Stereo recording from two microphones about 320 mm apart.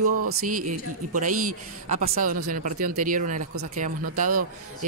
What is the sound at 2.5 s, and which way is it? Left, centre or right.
Speech, right.